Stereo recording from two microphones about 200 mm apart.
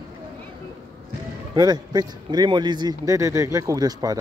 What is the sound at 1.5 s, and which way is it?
A man's voice, 20° right (ahead or behind).